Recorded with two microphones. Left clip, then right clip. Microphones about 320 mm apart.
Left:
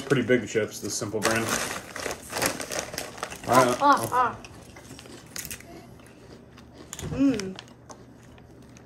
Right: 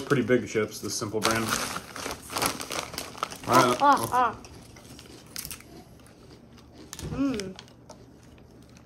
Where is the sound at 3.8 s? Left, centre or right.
Right.